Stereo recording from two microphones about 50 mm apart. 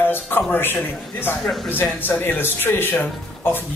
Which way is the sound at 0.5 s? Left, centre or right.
Left.